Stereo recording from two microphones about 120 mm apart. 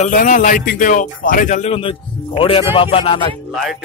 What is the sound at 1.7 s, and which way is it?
Speech, 50° left (ahead or behind).